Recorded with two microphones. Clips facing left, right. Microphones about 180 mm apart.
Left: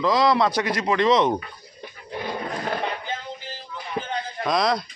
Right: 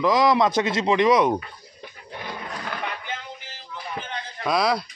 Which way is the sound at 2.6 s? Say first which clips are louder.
Left 4 dB; 35° left (ahead or behind).